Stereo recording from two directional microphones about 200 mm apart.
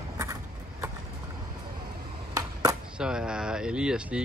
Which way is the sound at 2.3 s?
20° right (ahead or behind).